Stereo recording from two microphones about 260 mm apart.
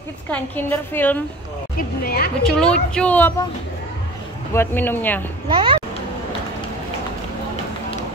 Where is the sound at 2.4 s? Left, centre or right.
Centre.